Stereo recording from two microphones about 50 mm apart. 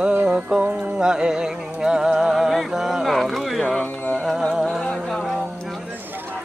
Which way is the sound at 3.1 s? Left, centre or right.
Centre.